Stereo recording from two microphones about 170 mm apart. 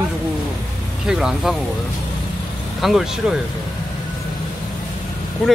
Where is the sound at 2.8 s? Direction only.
Centre (ahead or behind).